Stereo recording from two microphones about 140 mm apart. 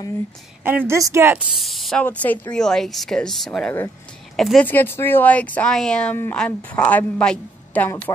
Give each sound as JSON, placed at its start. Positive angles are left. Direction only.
{"t": 0.7, "sound": "a woman's voice", "side_deg": -15}
{"t": 1.6, "sound": "speech", "side_deg": 0}
{"t": 2.0, "sound": "speech", "side_deg": 15}
{"t": 4.6, "sound": "a woman's voice", "side_deg": 15}